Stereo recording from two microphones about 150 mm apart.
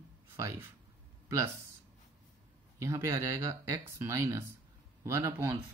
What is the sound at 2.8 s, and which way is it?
Speech, 20° right (ahead or behind).